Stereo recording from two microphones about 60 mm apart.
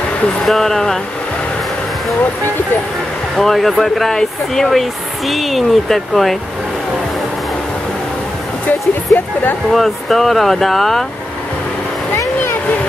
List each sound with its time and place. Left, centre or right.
0.5 s speech: centre
3.3 s speech: centre
8.6 s speech: left
9.7 s speech: centre